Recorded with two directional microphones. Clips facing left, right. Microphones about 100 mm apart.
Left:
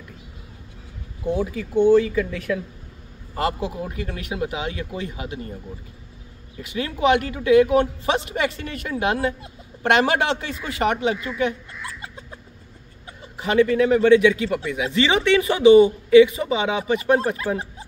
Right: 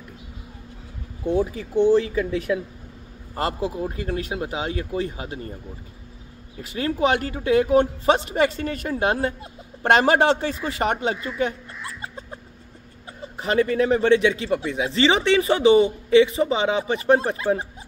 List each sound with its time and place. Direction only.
1.5 s speech: 30° right (ahead or behind)
3.3 s speech: 35° right (ahead or behind)
6.6 s a man's voice: 35° right (ahead or behind)
13.4 s a man's voice: 35° right (ahead or behind)